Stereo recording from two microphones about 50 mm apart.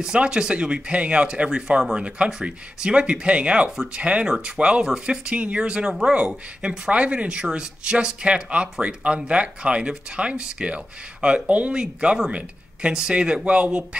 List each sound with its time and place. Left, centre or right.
0.0 s speech: centre